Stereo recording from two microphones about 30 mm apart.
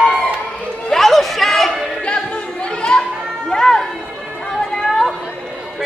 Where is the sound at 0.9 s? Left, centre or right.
Centre.